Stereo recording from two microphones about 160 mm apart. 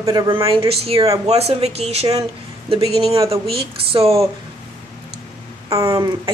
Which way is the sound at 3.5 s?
35° right (ahead or behind).